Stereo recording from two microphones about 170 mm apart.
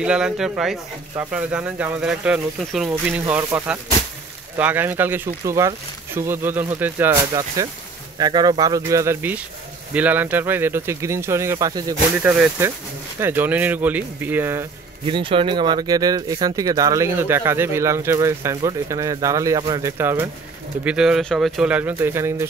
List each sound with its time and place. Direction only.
0.0 s speech: 5° right (ahead or behind)
15.0 s speech: 30° right (ahead or behind); by 22.5 s 15° right (ahead or behind)